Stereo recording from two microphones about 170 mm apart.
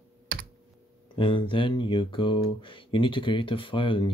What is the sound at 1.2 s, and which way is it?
Speech, 30° left (ahead or behind).